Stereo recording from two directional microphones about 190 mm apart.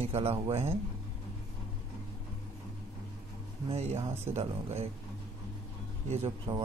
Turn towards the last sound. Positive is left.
turn(degrees=-25)  # may be behind; listen again after turning